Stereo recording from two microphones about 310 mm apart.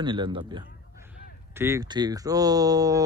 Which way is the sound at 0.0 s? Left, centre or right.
Centre.